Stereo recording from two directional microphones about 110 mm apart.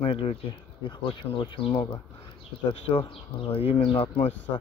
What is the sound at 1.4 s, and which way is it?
Speech, 55° left (ahead or behind).